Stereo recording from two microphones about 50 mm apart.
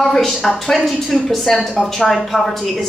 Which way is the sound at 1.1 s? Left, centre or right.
Centre.